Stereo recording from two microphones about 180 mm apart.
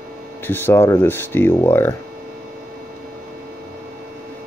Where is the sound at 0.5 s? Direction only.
10° left (ahead or behind).